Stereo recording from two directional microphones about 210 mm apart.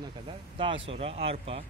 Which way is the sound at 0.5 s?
25° right (ahead or behind).